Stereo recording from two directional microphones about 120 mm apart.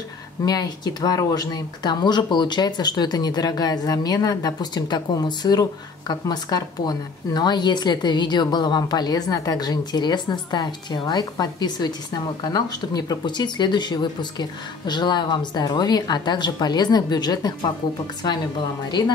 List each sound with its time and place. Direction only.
0.5 s speech: 35° left (ahead or behind)